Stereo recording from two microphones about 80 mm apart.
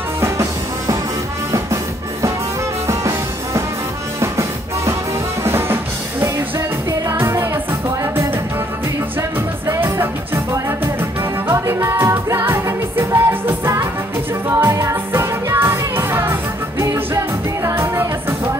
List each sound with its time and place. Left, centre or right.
0.2 s music: right
2.9 s music: right
11.0 s music: right
14.6 s music: right